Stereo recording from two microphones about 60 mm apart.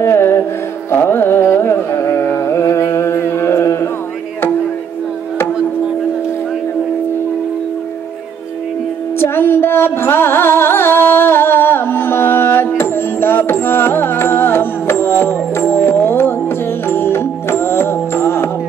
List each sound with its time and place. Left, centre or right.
0.0 s music: left
0.9 s carnatic music: left
9.2 s music: left